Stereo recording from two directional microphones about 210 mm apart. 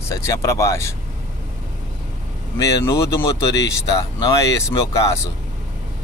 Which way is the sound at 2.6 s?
15° left (ahead or behind).